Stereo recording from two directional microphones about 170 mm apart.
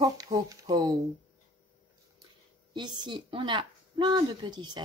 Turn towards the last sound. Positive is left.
turn(degrees=-25)  # may be behind; listen again after turning